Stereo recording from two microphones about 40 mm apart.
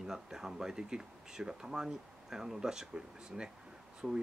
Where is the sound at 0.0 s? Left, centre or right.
Centre.